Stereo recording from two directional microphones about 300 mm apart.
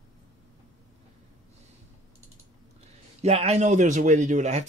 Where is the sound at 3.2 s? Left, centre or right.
Right.